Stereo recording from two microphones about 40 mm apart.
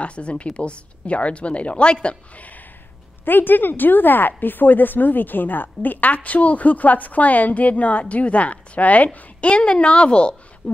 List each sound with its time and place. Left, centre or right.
0.0 s a woman's voice: left
2.3 s speech: left
3.3 s a woman's voice: left